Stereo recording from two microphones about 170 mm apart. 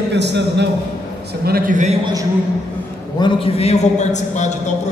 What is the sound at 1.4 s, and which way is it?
Speech, 60° right (ahead or behind).